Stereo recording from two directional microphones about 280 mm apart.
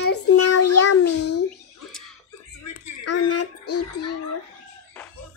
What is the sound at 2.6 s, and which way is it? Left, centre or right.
Child singing, left.